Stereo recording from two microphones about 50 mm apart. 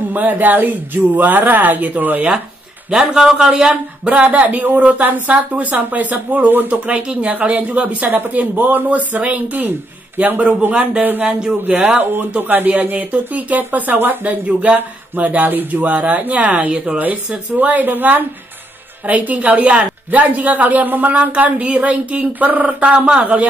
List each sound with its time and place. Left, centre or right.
0.1 s speech: right
2.9 s a man's voice: centre
4.0 s speech: right
6.7 s speech: right
10.7 s speech: right
11.6 s speech: right
22.9 s speech: centre